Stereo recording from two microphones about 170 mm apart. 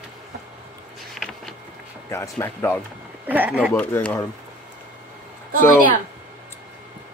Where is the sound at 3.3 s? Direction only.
10° right (ahead or behind).